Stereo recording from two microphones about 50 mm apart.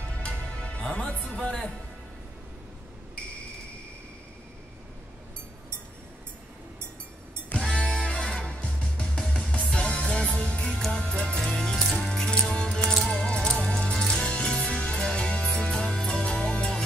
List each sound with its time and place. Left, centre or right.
0.2 s music: left
1.0 s speech: centre
7.5 s music: centre